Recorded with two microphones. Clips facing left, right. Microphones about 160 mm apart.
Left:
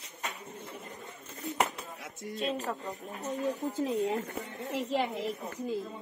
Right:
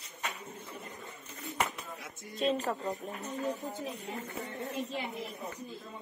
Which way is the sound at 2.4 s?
Centre (ahead or behind).